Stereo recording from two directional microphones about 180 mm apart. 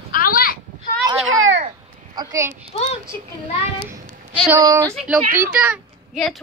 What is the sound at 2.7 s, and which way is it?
Speech, 35° left (ahead or behind).